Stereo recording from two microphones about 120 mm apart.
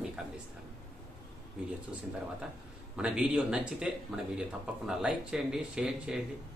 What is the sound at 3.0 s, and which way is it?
Speech, 10° right (ahead or behind).